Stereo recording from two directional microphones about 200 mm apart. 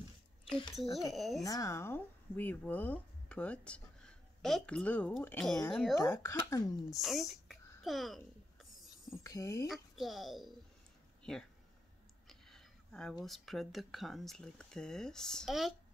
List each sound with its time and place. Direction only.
1.1 s speech: centre (ahead or behind)
1.4 s speech: 15° left (ahead or behind)
5.9 s speech: 10° left (ahead or behind)
6.9 s a sound: centre (ahead or behind)
9.1 s speech: 15° left (ahead or behind)
9.7 s speech: centre (ahead or behind)
12.3 s a sound: centre (ahead or behind)
13.2 s speech: centre (ahead or behind)